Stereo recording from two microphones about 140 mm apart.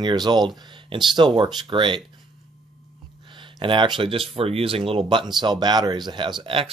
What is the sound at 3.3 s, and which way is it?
Speech, 35° right (ahead or behind).